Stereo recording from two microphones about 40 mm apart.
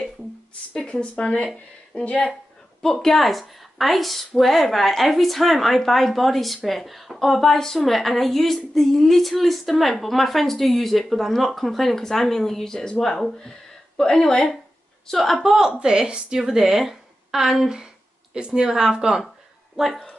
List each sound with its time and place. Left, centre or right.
1.1 s speech: left
2.8 s speech: centre
3.2 s a woman's voice: centre
15.8 s a woman's voice: right